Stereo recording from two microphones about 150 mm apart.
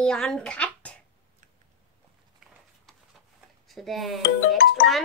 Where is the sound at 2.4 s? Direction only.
5° right (ahead or behind).